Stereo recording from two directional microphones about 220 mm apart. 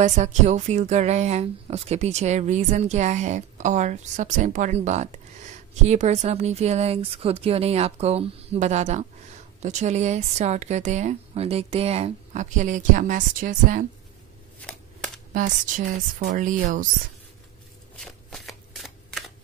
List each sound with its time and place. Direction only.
0.0 s a woman's voice: 30° right (ahead or behind)
15.3 s a woman's voice: 35° right (ahead or behind)
17.9 s shuffling cards: centre (ahead or behind)